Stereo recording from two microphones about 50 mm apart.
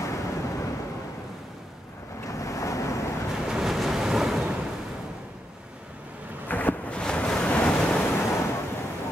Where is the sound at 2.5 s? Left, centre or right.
Left.